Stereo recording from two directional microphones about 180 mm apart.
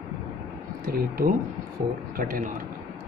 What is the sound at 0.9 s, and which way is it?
Speech, 55° right (ahead or behind).